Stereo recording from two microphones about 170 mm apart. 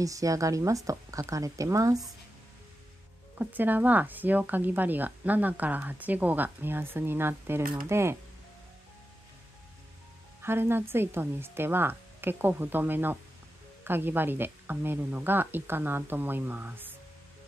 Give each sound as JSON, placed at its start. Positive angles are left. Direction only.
{"t": 0.0, "sound": "speech", "side_deg": -20}
{"t": 3.3, "sound": "speech", "side_deg": -10}
{"t": 10.4, "sound": "speech", "side_deg": -15}